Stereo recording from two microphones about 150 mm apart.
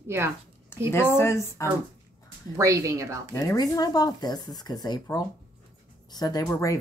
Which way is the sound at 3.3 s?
20° left (ahead or behind).